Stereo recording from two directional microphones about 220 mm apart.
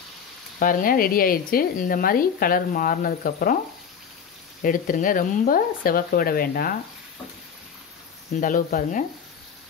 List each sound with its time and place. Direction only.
0.6 s speech: 40° left (ahead or behind)
4.6 s speech: 40° left (ahead or behind)
8.4 s speech: 40° left (ahead or behind)